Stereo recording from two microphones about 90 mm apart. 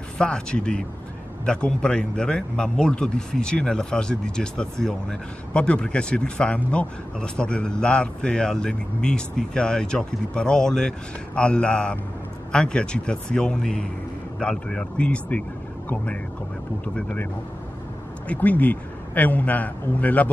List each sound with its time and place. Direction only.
0.2 s speech: 10° left (ahead or behind)
16.8 s speech: 15° left (ahead or behind)
18.3 s speech: 15° left (ahead or behind)